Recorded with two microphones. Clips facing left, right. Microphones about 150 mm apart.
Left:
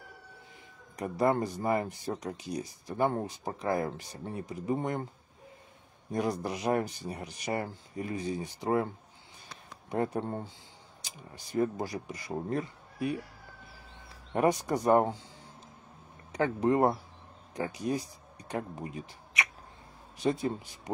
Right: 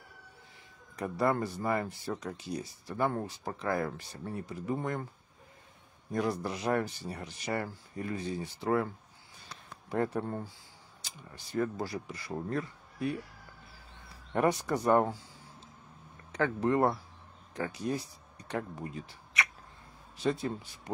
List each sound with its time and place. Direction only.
0.9 s speech: 15° left (ahead or behind)
6.1 s speech: 15° left (ahead or behind)
14.3 s speech: 15° left (ahead or behind)
16.3 s speech: 15° left (ahead or behind)